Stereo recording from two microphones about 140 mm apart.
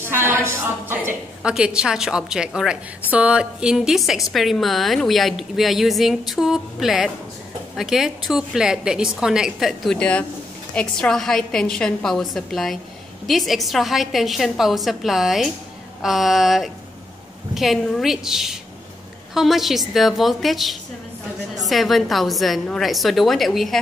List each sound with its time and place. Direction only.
0.0 s a sound: 15° right (ahead or behind)
0.5 s a woman's voice: 15° right (ahead or behind)
1.4 s a woman's voice: 5° right (ahead or behind)